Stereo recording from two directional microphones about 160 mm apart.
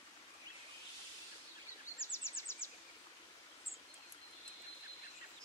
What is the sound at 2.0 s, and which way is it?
Bird vocalization, 15° left (ahead or behind).